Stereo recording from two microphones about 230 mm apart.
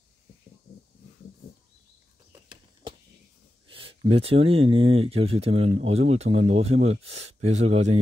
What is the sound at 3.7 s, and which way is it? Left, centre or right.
Speech, right.